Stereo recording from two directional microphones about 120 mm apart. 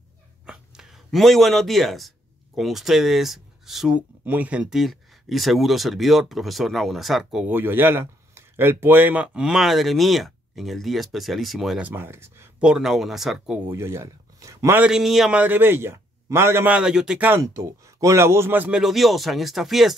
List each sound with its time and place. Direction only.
0.5 s speech: 5° right (ahead or behind)
4.2 s speech: 15° right (ahead or behind)
7.4 s speech: 15° right (ahead or behind)
11.8 s a man's voice: 20° right (ahead or behind)
12.6 s speech: 5° right (ahead or behind)
13.7 s speech: 20° right (ahead or behind)
14.8 s speech: 5° right (ahead or behind)
15.4 s a man's voice: 15° right (ahead or behind)
17.3 s a man's voice: 25° right (ahead or behind)
18.8 s speech: centre (ahead or behind)